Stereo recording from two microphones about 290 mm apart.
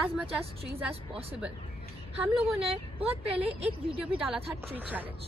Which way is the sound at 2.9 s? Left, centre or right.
Centre.